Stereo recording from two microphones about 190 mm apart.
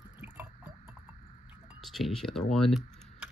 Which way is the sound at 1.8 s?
Centre (ahead or behind).